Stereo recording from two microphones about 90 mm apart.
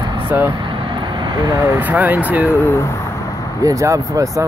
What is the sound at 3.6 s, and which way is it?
Speech, 40° right (ahead or behind).